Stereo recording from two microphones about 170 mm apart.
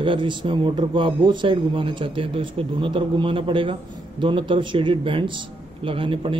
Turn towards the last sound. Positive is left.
turn(degrees=-30)  # may be behind; listen again after turning